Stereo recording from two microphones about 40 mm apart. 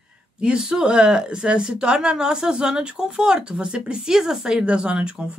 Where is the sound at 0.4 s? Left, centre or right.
Centre.